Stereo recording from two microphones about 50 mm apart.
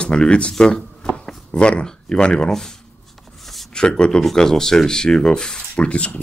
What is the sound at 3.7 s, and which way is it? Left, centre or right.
Speech, centre.